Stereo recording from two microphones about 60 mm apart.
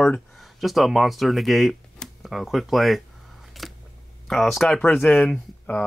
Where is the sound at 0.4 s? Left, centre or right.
Centre.